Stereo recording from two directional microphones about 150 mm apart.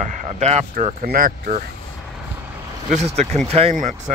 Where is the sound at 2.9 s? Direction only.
45° right (ahead or behind).